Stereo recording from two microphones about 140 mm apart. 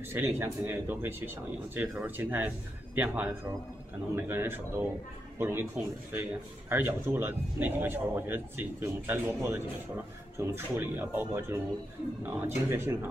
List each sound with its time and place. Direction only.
0.0 s speech: 15° right (ahead or behind)